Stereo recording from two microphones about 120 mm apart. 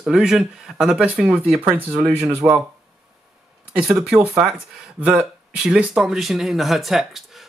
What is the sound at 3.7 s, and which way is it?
Speech, 10° right (ahead or behind).